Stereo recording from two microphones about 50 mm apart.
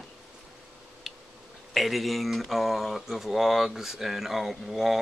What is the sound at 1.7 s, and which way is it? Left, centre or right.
Speech, centre.